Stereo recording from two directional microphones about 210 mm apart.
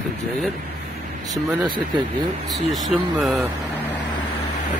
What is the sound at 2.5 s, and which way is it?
Speech, centre (ahead or behind).